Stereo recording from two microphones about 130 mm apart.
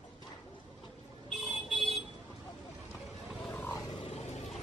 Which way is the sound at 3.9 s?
50° left (ahead or behind).